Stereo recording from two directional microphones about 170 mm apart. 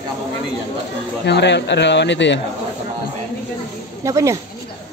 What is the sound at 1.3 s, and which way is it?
Speech, 85° left.